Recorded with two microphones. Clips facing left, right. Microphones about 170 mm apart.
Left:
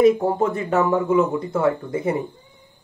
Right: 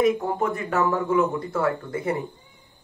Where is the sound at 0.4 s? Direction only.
20° left (ahead or behind).